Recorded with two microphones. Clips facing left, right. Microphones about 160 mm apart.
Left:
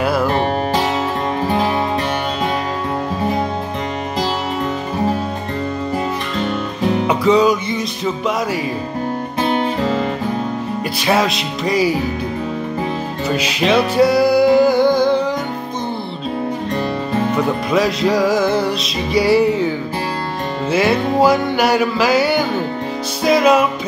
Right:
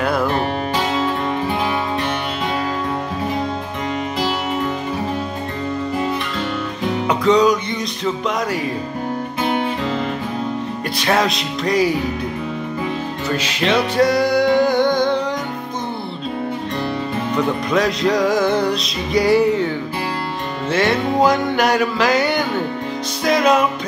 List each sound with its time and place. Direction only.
0.0 s music: 5° left (ahead or behind)
0.3 s music: 30° left (ahead or behind)
7.1 s music: 5° left (ahead or behind)
11.0 s music: 5° left (ahead or behind)
13.3 s music: 10° left (ahead or behind)
17.6 s music: 5° left (ahead or behind)
20.7 s music: 5° left (ahead or behind)